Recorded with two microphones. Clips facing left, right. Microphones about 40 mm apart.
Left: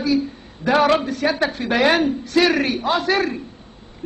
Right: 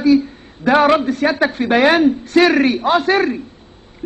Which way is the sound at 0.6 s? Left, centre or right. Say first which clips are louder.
Right 4 dB; centre.